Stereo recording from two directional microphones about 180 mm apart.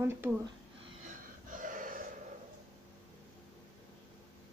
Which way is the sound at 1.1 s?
45° right (ahead or behind).